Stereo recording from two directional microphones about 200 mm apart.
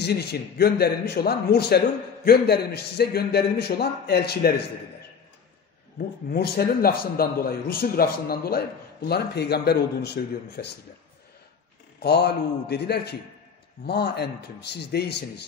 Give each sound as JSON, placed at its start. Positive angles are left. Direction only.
{"t": 0.0, "sound": "a man's voice", "side_deg": 55}
{"t": 5.9, "sound": "a man's voice", "side_deg": 50}
{"t": 12.0, "sound": "a man's voice", "side_deg": 55}